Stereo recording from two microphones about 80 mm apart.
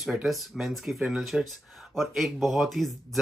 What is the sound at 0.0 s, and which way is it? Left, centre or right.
Speech, centre.